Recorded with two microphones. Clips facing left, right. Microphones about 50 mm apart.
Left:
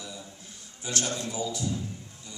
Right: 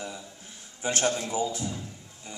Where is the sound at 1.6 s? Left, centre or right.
Right.